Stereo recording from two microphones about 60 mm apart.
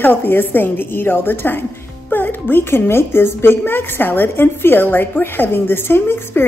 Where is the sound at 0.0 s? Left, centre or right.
Left.